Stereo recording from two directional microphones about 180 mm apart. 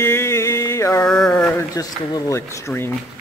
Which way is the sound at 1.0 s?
5° left (ahead or behind).